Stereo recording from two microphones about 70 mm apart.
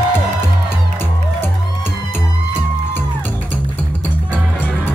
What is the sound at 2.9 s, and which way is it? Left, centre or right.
Music, left.